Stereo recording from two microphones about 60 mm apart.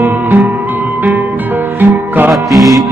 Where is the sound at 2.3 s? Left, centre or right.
Centre.